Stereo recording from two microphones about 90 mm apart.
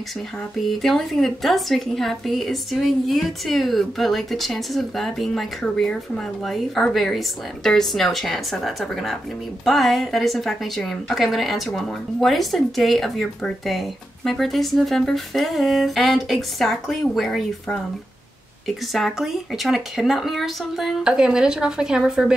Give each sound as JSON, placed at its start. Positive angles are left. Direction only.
{"t": 0.6, "sound": "a woman's voice", "side_deg": 0}